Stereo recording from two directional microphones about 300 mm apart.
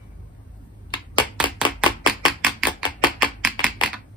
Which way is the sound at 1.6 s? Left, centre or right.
Centre.